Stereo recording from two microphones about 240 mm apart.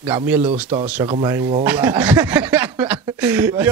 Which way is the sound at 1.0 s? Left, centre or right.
Centre.